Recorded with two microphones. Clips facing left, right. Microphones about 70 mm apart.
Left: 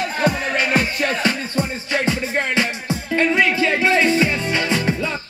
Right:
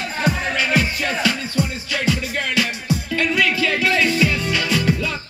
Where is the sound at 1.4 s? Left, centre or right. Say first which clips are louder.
Even; left.